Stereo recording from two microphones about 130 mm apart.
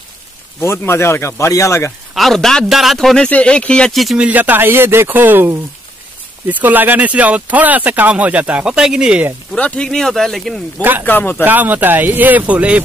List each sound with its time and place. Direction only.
0.6 s speech: 20° left (ahead or behind)
2.1 s a man's voice: centre (ahead or behind)
4.3 s speech: 15° right (ahead or behind)
9.5 s a man's voice: 10° left (ahead or behind)
10.8 s speech: 15° right (ahead or behind)
11.1 s speech: 15° left (ahead or behind)
11.4 s speech: 15° right (ahead or behind)